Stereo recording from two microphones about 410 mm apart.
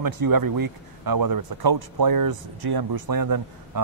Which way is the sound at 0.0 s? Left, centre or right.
Right.